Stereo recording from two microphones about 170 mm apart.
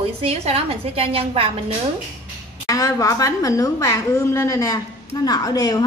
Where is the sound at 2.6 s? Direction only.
20° left (ahead or behind).